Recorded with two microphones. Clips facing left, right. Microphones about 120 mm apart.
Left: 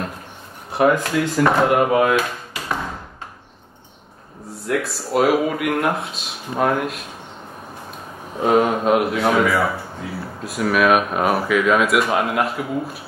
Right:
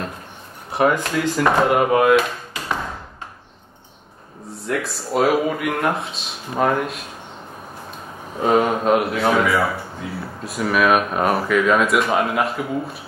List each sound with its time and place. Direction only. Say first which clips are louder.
0.7 s speech: left 2 dB; centre (ahead or behind)
4.6 s speech: left 2 dB; centre (ahead or behind)
8.4 s speech: left 1 dB; centre (ahead or behind)